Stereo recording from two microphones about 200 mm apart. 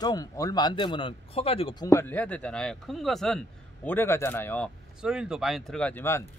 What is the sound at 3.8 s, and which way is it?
Speech, 10° left (ahead or behind).